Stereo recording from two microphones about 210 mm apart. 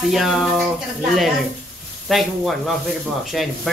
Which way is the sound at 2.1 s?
Centre (ahead or behind).